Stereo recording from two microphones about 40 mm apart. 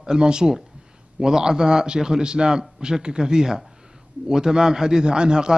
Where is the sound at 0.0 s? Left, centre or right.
Right.